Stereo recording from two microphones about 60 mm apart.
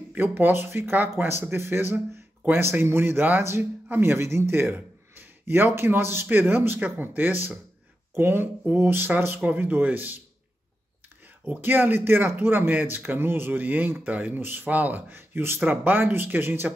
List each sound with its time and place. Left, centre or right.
0.1 s a man's voice: right
11.4 s speech: right